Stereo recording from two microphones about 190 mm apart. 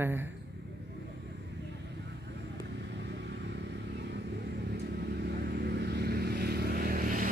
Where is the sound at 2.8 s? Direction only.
65° right (ahead or behind).